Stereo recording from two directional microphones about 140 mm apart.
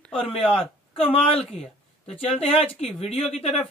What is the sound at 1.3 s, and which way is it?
Speech, centre (ahead or behind).